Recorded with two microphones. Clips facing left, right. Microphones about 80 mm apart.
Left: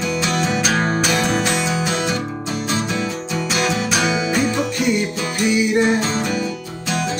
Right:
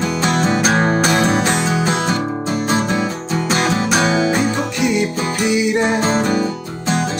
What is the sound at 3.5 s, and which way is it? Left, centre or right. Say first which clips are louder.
Music: right 3 dB; right.